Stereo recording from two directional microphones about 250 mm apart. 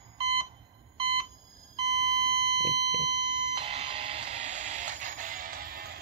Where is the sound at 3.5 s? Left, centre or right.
Right.